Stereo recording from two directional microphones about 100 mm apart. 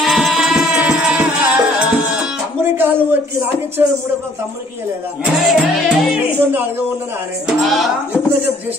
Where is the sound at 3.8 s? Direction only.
20° right (ahead or behind).